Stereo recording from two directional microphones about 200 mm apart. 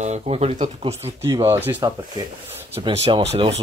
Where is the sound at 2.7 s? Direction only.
25° right (ahead or behind).